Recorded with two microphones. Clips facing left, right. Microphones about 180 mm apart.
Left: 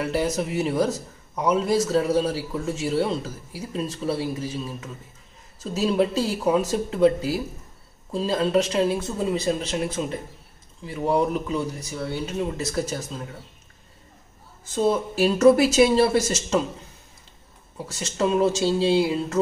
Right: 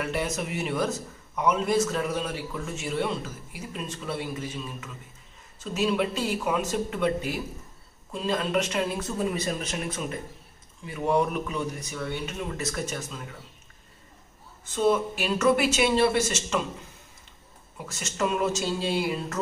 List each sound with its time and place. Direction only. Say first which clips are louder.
0.0 s a man's voice: left 5 dB; 35° left (ahead or behind)
14.6 s a man's voice: left 1 dB; 35° left (ahead or behind)
17.7 s speech: left 4 dB; 30° left (ahead or behind)